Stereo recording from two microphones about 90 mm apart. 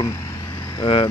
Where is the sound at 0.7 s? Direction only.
60° left (ahead or behind).